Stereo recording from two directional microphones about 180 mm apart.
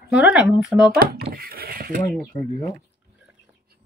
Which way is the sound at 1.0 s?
55° right (ahead or behind).